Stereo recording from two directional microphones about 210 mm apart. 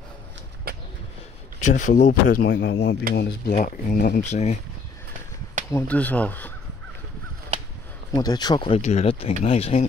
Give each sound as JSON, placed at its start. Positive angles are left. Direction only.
{"t": 0.7, "sound": "a sound", "side_deg": -45}
{"t": 1.6, "sound": "speech", "side_deg": 35}
{"t": 3.5, "sound": "speech", "side_deg": 35}
{"t": 5.7, "sound": "speech", "side_deg": 10}
{"t": 8.1, "sound": "speech", "side_deg": 20}